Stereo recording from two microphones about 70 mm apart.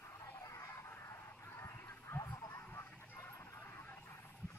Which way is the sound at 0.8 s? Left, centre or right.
Left.